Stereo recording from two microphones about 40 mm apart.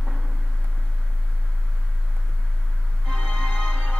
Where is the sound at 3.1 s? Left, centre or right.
Left.